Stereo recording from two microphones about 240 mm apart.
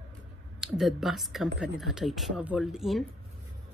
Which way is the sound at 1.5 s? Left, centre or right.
Right.